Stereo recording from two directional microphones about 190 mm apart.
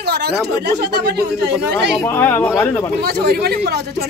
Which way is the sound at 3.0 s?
55° right (ahead or behind).